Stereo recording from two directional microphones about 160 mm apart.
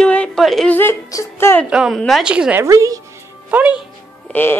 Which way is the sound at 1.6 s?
5° right (ahead or behind).